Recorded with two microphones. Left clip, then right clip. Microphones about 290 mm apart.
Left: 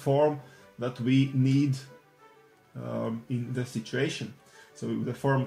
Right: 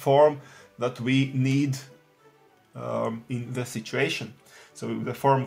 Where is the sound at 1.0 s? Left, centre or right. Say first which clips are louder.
Left 2 dB; right.